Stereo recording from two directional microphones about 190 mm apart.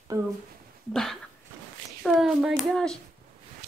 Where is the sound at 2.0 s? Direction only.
Centre (ahead or behind).